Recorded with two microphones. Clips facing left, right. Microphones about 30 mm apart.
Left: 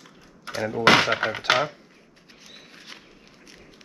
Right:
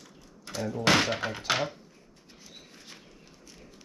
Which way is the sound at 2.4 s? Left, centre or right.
Left.